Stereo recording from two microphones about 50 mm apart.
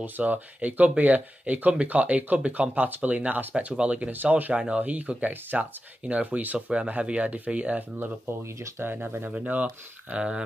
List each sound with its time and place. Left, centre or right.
0.0 s speech: right
4.1 s speech: right
8.5 s speech: right
8.8 s speech: right
9.5 s speech: right